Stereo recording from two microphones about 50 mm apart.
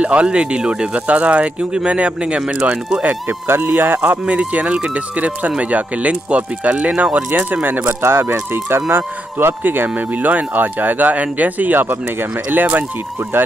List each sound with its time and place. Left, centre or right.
0.0 s speech: right
3.4 s speech: right
7.6 s speech: right
8.0 s speech: right